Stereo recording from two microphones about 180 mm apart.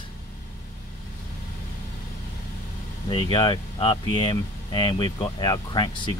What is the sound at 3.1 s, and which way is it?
Speech, 25° left (ahead or behind).